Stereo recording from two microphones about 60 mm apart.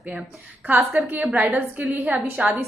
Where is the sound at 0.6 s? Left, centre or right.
Right.